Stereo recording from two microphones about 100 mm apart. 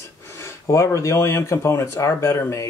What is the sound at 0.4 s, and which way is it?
Speech, 30° left (ahead or behind).